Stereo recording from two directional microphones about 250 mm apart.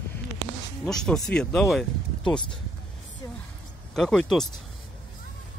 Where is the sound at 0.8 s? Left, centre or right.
Centre.